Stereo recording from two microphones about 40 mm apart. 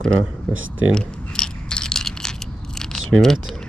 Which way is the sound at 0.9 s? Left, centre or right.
Left.